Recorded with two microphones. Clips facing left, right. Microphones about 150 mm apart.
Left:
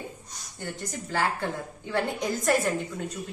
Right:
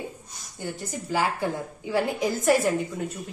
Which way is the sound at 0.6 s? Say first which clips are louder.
Right 2 dB; 10° right (ahead or behind).